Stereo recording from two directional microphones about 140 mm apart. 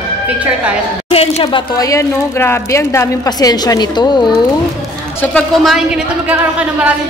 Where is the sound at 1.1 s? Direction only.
45° left (ahead or behind).